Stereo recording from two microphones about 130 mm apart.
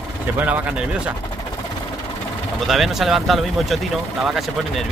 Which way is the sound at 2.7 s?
Centre (ahead or behind).